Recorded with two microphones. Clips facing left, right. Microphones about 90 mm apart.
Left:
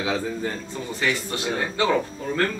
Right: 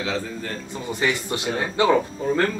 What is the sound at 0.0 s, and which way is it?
Speech, 10° left (ahead or behind).